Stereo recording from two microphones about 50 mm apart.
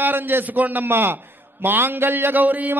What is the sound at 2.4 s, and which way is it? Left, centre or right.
Speech, right.